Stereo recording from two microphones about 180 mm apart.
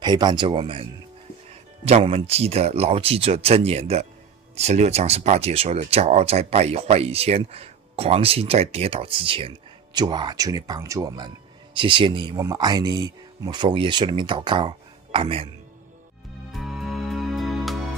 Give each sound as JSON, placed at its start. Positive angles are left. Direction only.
{"t": 0.0, "sound": "speech", "side_deg": -25}
{"t": 1.9, "sound": "speech", "side_deg": -35}
{"t": 16.5, "sound": "music", "side_deg": 0}